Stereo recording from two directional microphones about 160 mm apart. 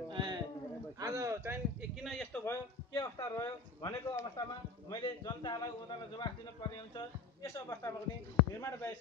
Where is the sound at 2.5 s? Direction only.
20° left (ahead or behind).